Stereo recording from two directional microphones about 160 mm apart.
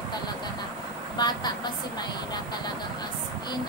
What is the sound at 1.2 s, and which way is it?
Speech, 25° left (ahead or behind).